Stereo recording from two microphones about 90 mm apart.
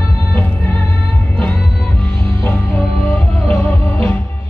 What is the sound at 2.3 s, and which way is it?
Music, 20° left (ahead or behind).